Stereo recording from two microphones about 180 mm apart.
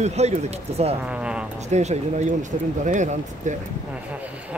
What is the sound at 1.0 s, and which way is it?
Speech, 5° right (ahead or behind).